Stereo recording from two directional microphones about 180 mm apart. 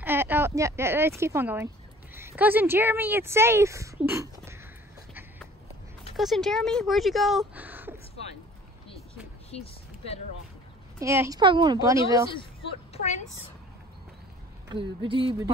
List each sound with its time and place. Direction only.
0.0 s a woman's voice: 10° right (ahead or behind)
6.1 s speech: centre (ahead or behind)
9.5 s speech: 35° left (ahead or behind)
11.0 s a woman's voice: 15° right (ahead or behind)
12.9 s a woman's voice: 40° left (ahead or behind)
14.7 s a woman's voice: 30° right (ahead or behind)